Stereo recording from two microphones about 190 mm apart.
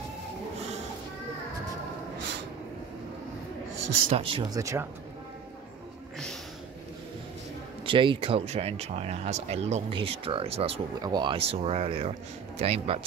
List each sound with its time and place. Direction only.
4.1 s speech: 25° right (ahead or behind)
7.8 s speech: 25° right (ahead or behind)